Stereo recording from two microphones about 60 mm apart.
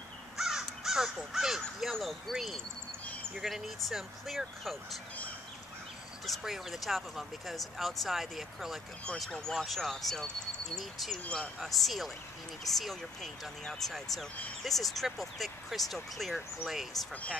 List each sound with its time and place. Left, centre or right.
0.4 s crow: centre
1.8 s speech: centre
6.2 s speech: centre
17.1 s speech: left